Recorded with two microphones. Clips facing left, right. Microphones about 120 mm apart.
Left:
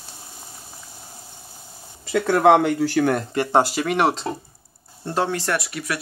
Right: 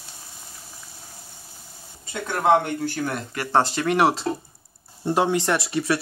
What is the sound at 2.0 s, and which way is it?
Speech, 90° left.